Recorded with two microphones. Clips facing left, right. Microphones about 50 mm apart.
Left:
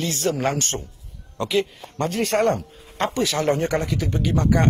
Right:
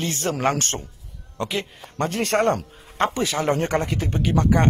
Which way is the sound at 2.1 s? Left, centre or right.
Right.